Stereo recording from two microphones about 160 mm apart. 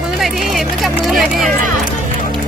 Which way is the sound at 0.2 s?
Centre (ahead or behind).